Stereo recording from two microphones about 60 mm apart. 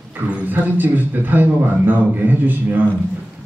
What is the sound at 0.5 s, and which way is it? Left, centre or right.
Speech, right.